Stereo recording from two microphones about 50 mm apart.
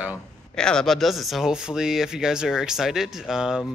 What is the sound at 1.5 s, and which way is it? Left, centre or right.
Speech, centre.